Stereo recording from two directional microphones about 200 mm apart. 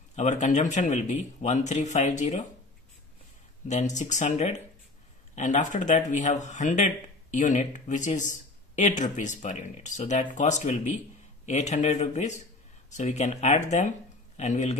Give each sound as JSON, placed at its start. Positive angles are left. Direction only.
{"t": 0.1, "sound": "a man's voice", "side_deg": 35}
{"t": 3.6, "sound": "a man's voice", "side_deg": 35}